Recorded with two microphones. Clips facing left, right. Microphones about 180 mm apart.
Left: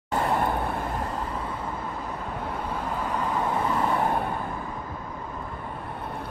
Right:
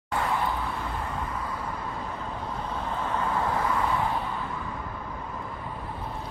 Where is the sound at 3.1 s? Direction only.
15° left (ahead or behind).